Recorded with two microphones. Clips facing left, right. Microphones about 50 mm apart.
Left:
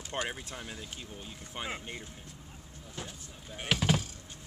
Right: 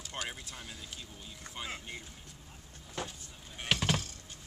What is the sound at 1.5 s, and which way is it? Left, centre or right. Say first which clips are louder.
Speech: left 3 dB; left.